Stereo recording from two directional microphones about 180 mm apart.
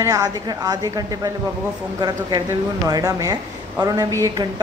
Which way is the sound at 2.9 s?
20° right (ahead or behind).